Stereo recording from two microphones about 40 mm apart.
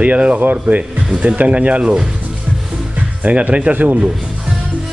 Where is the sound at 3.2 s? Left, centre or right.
Right.